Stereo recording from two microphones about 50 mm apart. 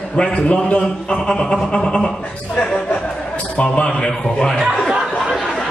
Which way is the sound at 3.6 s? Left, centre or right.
Left.